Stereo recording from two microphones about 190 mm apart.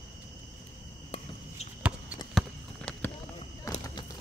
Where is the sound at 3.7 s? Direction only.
15° left (ahead or behind).